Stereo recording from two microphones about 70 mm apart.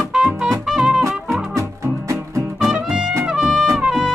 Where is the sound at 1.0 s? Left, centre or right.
Right.